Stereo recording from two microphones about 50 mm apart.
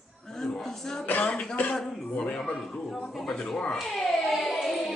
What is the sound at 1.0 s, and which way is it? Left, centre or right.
Speech, left.